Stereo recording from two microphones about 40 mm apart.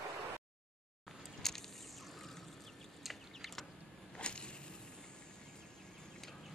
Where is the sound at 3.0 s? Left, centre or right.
Centre.